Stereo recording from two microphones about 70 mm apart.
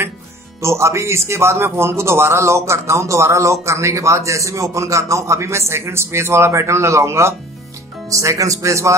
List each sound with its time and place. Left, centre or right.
0.6 s a man's voice: right